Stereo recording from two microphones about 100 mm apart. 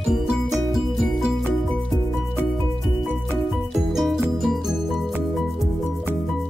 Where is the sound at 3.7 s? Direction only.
Centre (ahead or behind).